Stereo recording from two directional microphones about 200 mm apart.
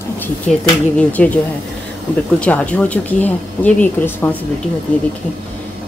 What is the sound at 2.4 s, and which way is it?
Speech, 5° left (ahead or behind).